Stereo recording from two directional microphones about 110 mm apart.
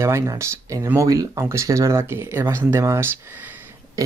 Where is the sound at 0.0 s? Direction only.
25° right (ahead or behind).